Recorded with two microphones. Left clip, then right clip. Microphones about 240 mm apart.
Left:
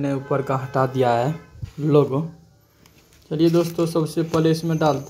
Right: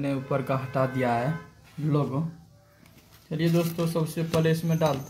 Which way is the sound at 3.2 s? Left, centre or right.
Left.